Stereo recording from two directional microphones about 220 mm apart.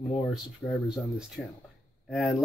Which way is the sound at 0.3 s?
Centre (ahead or behind).